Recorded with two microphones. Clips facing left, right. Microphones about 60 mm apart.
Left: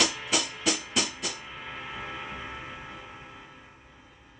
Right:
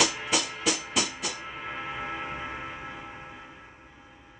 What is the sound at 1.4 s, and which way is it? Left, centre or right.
Music, right.